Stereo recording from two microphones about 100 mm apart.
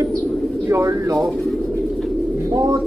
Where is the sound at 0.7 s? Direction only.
25° right (ahead or behind).